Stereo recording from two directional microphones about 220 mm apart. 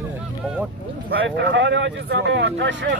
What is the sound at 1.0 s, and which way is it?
Speech, 55° right (ahead or behind).